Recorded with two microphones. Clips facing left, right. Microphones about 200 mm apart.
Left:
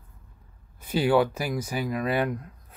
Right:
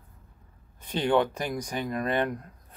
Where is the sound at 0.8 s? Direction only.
5° left (ahead or behind).